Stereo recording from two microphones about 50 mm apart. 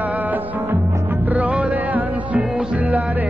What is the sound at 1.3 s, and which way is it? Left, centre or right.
Music, right.